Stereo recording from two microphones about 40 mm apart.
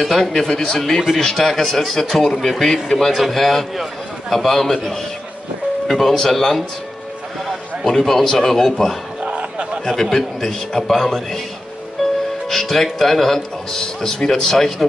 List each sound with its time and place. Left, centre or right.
0.0 s speech: centre
0.3 s speech: centre
5.9 s a man's voice: centre
9.2 s a sound: right
9.8 s speech: centre
12.4 s speech: centre